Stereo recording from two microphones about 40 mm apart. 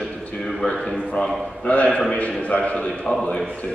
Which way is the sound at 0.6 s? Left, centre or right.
Centre.